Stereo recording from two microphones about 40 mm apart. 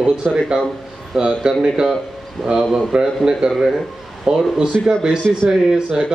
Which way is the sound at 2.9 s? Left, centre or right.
Right.